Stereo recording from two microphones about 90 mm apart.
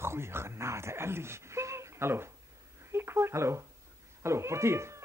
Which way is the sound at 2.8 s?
30° right (ahead or behind).